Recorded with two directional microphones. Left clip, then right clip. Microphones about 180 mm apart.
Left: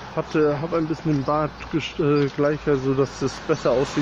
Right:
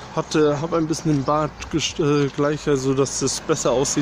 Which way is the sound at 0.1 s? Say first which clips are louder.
Right 2 dB; 30° right (ahead or behind).